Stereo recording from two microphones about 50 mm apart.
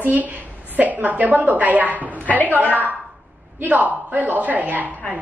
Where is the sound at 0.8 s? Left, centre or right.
Right.